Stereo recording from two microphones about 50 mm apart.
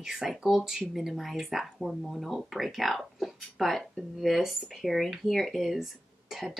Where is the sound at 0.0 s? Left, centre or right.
Centre.